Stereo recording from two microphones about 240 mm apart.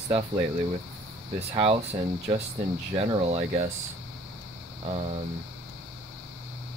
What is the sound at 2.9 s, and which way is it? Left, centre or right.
Speech, right.